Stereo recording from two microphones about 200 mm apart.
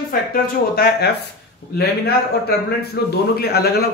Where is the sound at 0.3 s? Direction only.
50° left (ahead or behind).